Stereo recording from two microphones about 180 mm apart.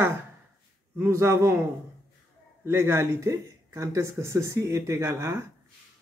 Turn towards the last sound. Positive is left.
turn(degrees=-15)  # may be behind; listen again after turning